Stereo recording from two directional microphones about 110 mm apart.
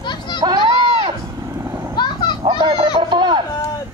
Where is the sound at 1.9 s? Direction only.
45° left (ahead or behind).